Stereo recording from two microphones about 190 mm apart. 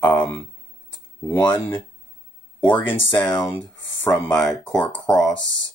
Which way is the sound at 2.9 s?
25° left (ahead or behind).